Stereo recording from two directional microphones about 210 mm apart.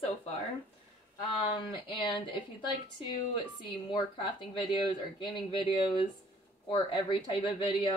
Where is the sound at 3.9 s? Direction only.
20° left (ahead or behind).